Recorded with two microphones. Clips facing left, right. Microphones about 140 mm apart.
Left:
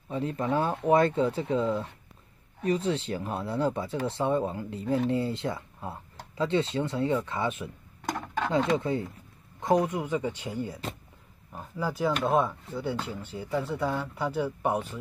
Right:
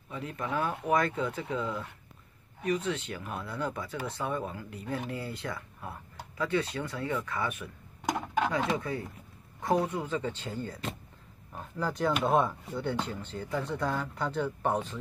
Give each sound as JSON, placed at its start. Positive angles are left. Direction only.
{"t": 0.1, "sound": "speech", "side_deg": 30}
{"t": 8.0, "sound": "a sound", "side_deg": -15}
{"t": 8.7, "sound": "speech", "side_deg": 25}